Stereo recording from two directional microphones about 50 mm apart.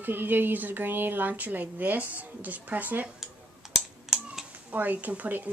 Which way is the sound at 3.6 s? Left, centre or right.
Centre.